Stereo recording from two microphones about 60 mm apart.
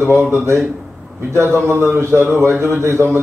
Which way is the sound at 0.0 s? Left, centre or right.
Right.